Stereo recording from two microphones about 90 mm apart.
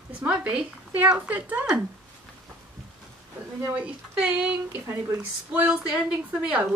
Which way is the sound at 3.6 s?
15° right (ahead or behind).